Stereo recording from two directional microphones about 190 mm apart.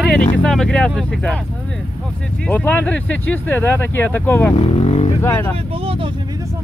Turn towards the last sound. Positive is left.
turn(degrees=35)  # may be behind; listen again after turning